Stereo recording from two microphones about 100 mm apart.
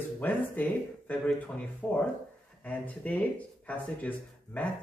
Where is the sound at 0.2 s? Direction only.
15° left (ahead or behind).